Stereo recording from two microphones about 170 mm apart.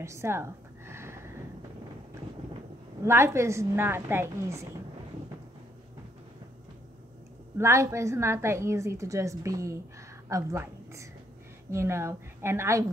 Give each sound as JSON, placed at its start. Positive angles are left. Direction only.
{"t": 0.0, "sound": "a sound", "side_deg": -15}
{"t": 3.0, "sound": "a woman's voice", "side_deg": -15}
{"t": 7.5, "sound": "a woman's voice", "side_deg": -15}